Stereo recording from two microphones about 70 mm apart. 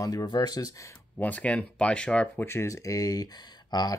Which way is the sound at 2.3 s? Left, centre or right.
Left.